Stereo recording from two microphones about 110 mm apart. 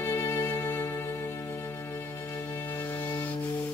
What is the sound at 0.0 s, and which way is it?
Music, 25° left (ahead or behind).